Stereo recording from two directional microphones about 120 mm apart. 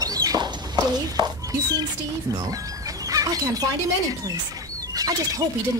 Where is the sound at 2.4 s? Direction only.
30° right (ahead or behind).